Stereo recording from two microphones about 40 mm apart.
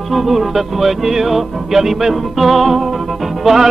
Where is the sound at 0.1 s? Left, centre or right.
Centre.